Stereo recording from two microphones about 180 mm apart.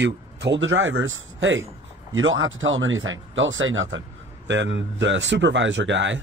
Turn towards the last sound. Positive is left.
turn(degrees=-90)